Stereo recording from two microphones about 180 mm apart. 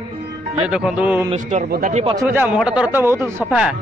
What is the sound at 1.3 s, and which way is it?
Speech, 40° right (ahead or behind).